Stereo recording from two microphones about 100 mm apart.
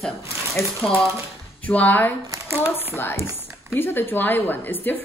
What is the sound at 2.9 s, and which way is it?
A woman's voice, 25° left (ahead or behind).